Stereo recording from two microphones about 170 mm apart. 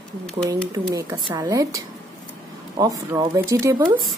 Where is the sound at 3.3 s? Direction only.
15° right (ahead or behind).